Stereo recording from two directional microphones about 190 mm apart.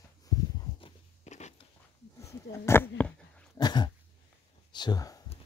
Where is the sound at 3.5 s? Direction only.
20° left (ahead or behind).